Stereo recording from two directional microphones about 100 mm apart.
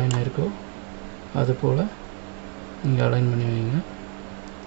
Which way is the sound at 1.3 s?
10° left (ahead or behind).